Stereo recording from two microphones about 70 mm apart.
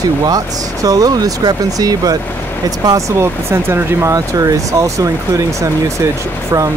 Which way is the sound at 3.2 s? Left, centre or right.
Right.